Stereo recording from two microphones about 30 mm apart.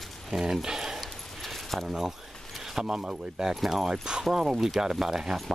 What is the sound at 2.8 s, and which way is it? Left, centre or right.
Speech, right.